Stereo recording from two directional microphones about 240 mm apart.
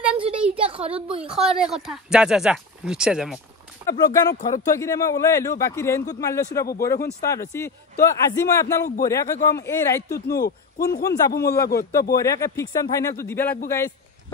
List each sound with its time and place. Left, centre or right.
0.2 s a sound: right
1.2 s speech: centre
3.8 s a man's voice: centre
10.2 s a man's voice: left
11.1 s a man's voice: centre